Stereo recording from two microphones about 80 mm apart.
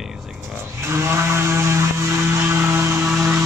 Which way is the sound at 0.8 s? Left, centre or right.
Right.